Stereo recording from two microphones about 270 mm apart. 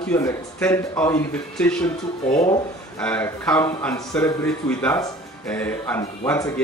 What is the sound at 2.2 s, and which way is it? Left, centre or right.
Speech, left.